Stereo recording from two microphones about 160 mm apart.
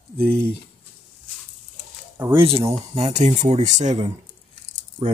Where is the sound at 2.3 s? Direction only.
35° right (ahead or behind).